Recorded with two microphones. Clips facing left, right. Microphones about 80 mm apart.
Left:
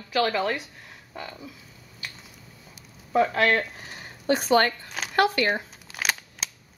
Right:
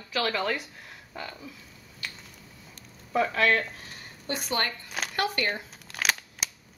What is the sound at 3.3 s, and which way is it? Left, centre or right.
Speech, left.